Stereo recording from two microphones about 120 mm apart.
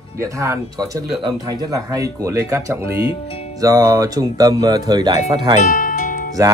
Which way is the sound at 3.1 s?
50° left (ahead or behind).